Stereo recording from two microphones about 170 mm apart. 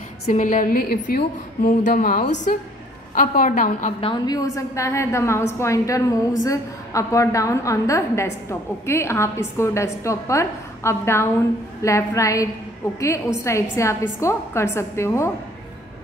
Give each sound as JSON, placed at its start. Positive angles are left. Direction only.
{"t": 0.3, "sound": "a woman's voice", "side_deg": 50}
{"t": 4.0, "sound": "a woman's voice", "side_deg": 25}